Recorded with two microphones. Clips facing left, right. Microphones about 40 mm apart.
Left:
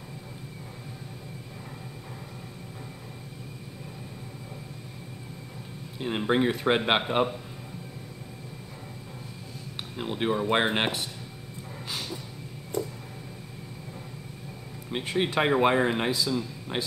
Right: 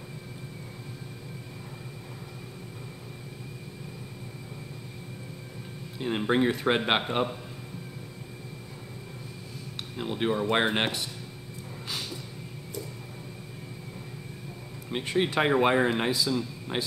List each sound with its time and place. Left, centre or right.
5.9 s speech: centre
9.9 s speech: centre
12.7 s a sound: left
14.9 s speech: centre